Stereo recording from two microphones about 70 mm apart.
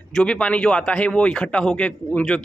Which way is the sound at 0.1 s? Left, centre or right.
Centre.